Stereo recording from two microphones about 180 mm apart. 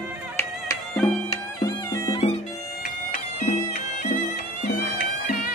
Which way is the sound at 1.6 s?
20° left (ahead or behind).